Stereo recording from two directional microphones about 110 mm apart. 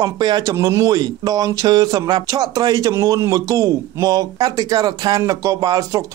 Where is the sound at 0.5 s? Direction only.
30° right (ahead or behind).